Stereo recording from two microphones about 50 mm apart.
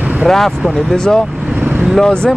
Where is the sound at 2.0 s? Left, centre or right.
Centre.